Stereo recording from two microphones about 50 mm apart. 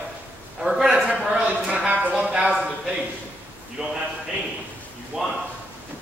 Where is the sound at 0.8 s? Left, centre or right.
Centre.